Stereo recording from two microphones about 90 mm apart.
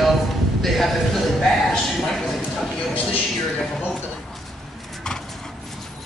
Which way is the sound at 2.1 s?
5° left (ahead or behind).